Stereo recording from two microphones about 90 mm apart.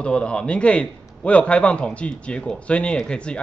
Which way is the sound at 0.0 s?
10° left (ahead or behind).